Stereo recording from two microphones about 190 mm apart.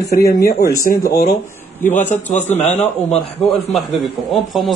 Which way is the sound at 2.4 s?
35° left (ahead or behind).